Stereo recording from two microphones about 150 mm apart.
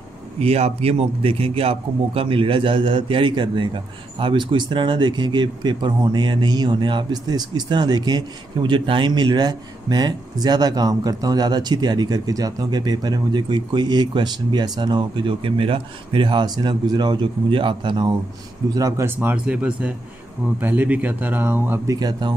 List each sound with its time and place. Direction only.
0.4 s a man's voice: 45° right (ahead or behind)
18.8 s speech: 20° right (ahead or behind)